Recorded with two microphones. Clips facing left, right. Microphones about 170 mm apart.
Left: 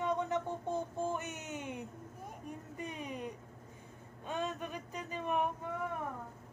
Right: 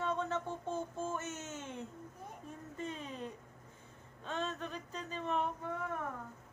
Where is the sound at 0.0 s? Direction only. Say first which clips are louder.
Left 2 dB; 15° left (ahead or behind).